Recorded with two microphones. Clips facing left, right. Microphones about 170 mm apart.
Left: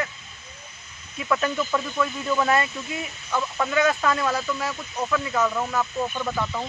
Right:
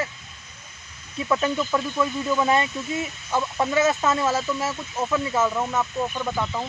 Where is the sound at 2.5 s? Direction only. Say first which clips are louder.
Right 2 dB; 25° right (ahead or behind).